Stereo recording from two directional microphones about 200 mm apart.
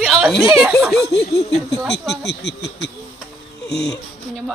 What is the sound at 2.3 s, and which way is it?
Speech, 55° left (ahead or behind).